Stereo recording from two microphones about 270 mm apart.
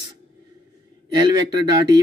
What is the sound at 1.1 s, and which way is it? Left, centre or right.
Speech, centre.